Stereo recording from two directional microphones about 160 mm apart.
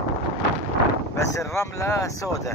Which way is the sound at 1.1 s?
20° left (ahead or behind).